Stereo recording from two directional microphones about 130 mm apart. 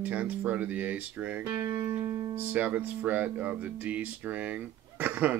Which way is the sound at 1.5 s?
20° right (ahead or behind).